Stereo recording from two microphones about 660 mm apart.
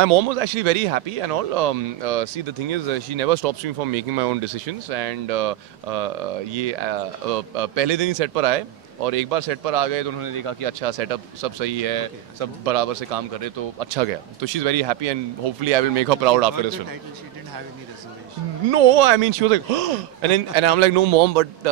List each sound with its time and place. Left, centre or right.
0.0 s speech: right
4.8 s speech: right
18.7 s speech: right